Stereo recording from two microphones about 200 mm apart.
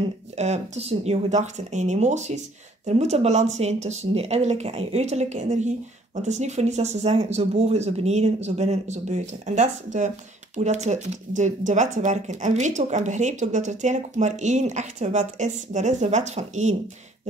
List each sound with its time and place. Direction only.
0.4 s speech: 30° right (ahead or behind)